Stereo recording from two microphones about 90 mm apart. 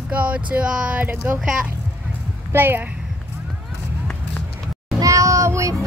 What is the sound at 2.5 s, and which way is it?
Speech, 25° right (ahead or behind).